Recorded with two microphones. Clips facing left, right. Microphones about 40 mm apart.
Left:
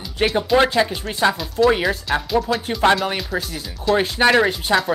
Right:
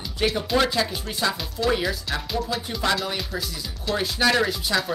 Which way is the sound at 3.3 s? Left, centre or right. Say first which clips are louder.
Left 6 dB; centre.